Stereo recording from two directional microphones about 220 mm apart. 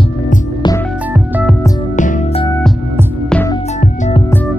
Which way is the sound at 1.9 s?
35° left (ahead or behind).